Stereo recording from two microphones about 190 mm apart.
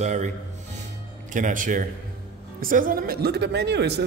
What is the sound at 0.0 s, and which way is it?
Speech, 40° right (ahead or behind).